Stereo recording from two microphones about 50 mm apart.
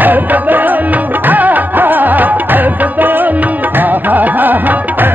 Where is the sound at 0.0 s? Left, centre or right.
Right.